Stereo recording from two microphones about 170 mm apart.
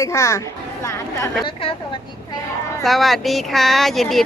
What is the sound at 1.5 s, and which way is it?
Speech, 30° left (ahead or behind).